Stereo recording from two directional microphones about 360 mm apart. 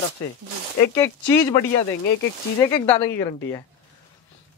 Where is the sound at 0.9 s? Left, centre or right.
Centre.